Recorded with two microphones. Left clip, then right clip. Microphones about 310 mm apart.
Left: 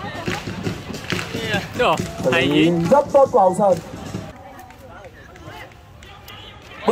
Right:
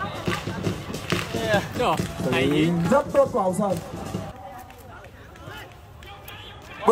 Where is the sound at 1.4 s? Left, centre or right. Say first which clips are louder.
Right 3 dB; right.